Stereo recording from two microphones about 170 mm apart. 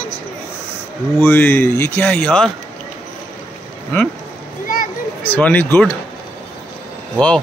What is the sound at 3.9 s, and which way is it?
Speech, 10° left (ahead or behind).